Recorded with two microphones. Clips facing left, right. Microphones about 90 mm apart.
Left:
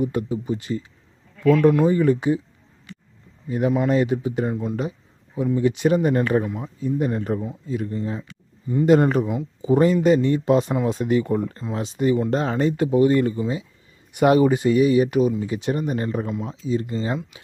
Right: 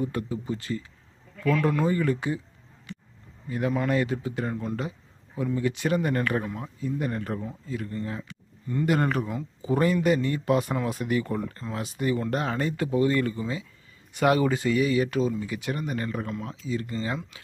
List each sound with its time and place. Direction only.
0.0 s a man's voice: 20° left (ahead or behind)
3.4 s a man's voice: 20° left (ahead or behind)
6.4 s speech: 10° left (ahead or behind)
6.8 s a man's voice: 20° left (ahead or behind)
8.8 s a man's voice: 25° left (ahead or behind)